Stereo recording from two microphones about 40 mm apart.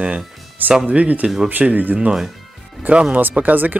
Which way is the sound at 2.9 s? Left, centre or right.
Right.